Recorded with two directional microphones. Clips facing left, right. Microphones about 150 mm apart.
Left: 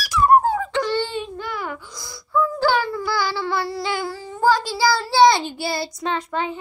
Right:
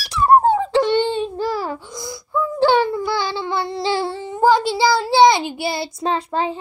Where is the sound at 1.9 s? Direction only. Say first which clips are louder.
Left 3 dB; 20° right (ahead or behind).